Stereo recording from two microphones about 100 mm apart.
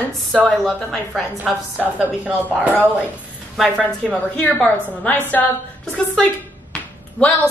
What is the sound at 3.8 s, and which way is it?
A woman's voice, 15° left (ahead or behind).